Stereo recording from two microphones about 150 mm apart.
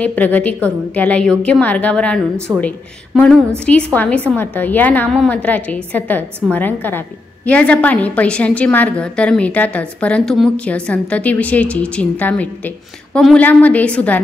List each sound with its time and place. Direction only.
0.0 s a woman's voice: 10° left (ahead or behind)
2.5 s speech: 25° right (ahead or behind)
3.2 s a woman's voice: 5° left (ahead or behind)